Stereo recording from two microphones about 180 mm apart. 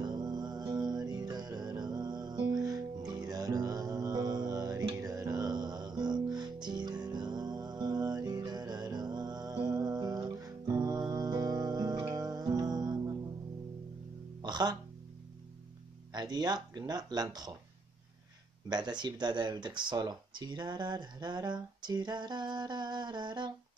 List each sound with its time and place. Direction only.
0.0 s music: 25° right (ahead or behind)
14.4 s music: 25° right (ahead or behind)
16.1 s speech: 25° right (ahead or behind)
18.7 s speech: 25° right (ahead or behind)